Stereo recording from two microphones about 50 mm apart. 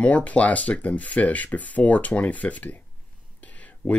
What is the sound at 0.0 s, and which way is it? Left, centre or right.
Speech, left.